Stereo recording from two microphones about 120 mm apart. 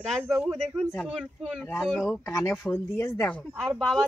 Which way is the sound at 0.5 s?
Centre (ahead or behind).